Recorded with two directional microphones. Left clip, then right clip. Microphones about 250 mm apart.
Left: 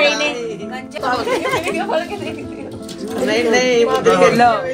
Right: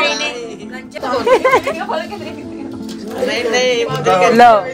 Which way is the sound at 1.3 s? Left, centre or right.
Right.